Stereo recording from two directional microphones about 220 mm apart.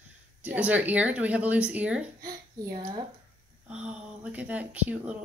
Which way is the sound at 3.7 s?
5° right (ahead or behind).